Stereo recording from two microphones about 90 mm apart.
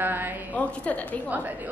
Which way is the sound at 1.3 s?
20° right (ahead or behind).